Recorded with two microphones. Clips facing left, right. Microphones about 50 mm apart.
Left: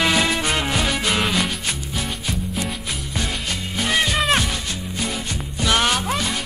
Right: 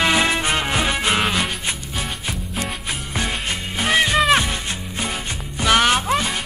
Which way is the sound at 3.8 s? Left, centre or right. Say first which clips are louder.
Right 3 dB; centre.